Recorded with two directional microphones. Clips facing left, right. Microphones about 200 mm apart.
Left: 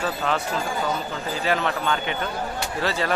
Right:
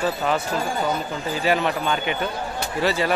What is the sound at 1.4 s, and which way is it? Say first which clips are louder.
Speech: right 2 dB; 10° right (ahead or behind).